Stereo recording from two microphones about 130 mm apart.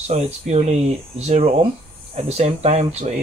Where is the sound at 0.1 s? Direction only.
60° right (ahead or behind).